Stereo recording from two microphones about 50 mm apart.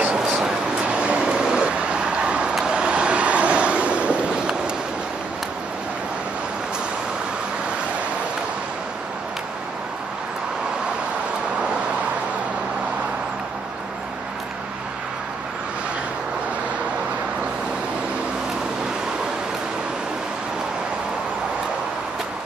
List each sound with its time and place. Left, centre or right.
0.8 s vehicle: right